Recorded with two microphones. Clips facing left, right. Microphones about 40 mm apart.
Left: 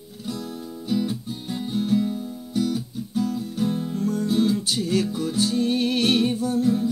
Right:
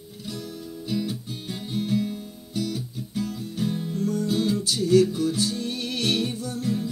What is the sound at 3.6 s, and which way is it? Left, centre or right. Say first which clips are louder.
Music: left 1 dB; left.